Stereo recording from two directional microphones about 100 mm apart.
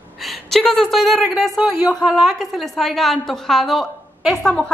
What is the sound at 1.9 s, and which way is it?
A woman's voice, centre (ahead or behind).